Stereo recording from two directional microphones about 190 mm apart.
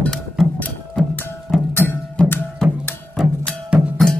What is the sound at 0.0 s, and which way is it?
Music, 5° left (ahead or behind).